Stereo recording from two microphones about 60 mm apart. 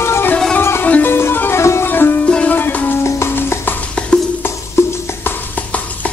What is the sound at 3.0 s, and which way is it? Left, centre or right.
Music, left.